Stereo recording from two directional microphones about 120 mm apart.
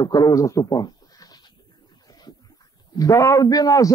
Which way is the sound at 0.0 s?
30° left (ahead or behind).